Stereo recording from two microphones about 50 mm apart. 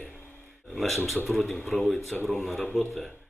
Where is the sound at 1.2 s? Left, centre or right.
Centre.